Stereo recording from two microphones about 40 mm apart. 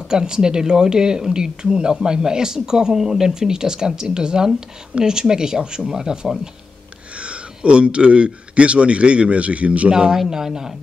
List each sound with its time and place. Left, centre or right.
0.1 s speech: centre
7.2 s speech: right
10.1 s speech: centre